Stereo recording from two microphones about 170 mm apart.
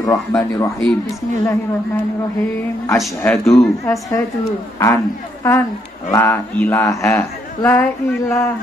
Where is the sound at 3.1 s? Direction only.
10° left (ahead or behind).